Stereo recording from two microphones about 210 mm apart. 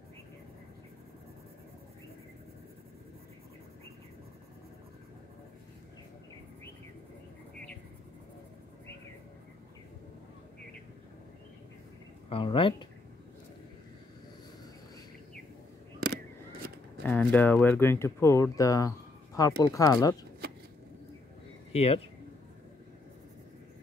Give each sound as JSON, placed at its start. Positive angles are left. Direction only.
{"t": 12.3, "sound": "speech", "side_deg": 25}
{"t": 16.0, "sound": "a sound", "side_deg": -50}
{"t": 17.0, "sound": "speech", "side_deg": 10}
{"t": 21.7, "sound": "speech", "side_deg": 30}